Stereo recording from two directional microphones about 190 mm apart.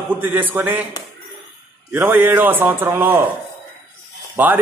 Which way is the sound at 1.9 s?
10° right (ahead or behind).